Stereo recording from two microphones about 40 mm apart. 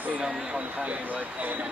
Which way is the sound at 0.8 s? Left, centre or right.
Right.